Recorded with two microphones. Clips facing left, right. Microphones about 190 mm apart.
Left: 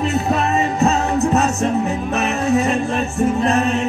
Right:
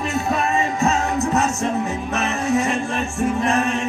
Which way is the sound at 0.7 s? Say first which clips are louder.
Left 3 dB; 40° left (ahead or behind).